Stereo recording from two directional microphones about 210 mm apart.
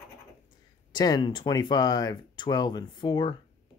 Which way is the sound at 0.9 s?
20° left (ahead or behind).